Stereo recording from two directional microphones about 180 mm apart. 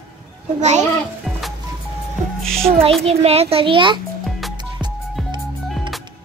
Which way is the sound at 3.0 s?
35° right (ahead or behind).